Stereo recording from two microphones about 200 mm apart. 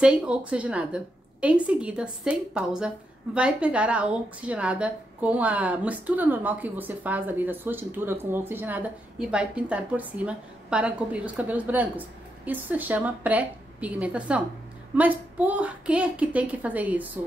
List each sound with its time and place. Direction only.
0.0 s a woman's voice: 5° right (ahead or behind)